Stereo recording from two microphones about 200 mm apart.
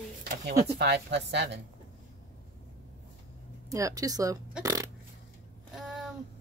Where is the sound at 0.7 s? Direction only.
55° right (ahead or behind).